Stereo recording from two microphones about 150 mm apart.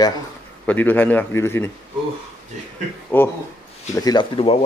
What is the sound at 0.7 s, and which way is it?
A man's voice, 10° left (ahead or behind).